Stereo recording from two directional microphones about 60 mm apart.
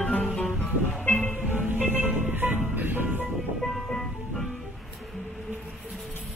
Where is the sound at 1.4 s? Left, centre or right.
Right.